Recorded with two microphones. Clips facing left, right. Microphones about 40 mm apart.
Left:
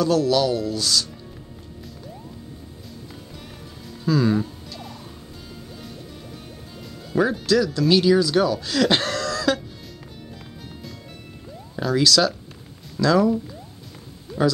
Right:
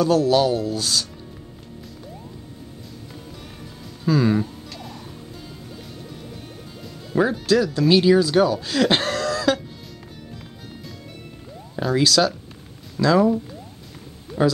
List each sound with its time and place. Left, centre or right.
0.0 s speech: right
4.1 s speech: right
7.1 s speech: centre
11.7 s speech: centre